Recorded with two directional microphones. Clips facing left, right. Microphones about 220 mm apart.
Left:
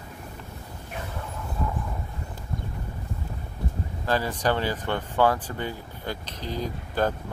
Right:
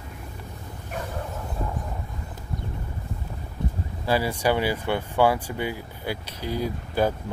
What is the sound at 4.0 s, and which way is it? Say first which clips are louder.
Speech: right 2 dB; 10° right (ahead or behind).